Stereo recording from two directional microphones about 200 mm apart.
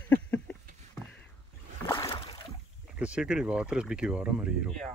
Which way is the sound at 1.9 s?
20° left (ahead or behind).